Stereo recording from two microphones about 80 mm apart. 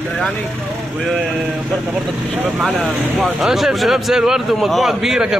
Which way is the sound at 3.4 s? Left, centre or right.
Centre.